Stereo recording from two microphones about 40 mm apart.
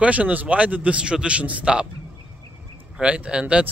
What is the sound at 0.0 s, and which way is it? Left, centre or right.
Speech, right.